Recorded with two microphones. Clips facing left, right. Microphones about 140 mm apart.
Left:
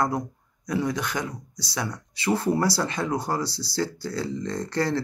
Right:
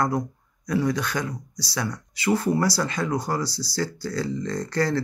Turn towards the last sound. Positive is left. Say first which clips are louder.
# right 1 dB
turn(degrees=25)  # may be behind; listen again after turning